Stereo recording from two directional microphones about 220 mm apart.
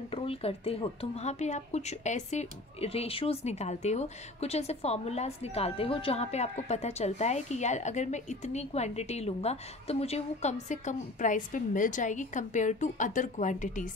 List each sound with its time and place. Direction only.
0.1 s a woman's voice: 25° left (ahead or behind)